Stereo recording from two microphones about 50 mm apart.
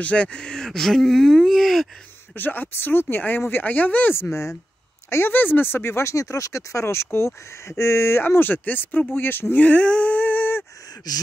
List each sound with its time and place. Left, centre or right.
0.0 s speech: left
0.7 s speech: centre
2.3 s speech: left
4.1 s speech: left
5.3 s speech: left
5.9 s speech: left
9.7 s a sound: left